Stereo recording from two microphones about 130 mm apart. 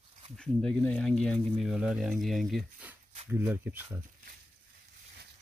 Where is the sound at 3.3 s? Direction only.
15° right (ahead or behind).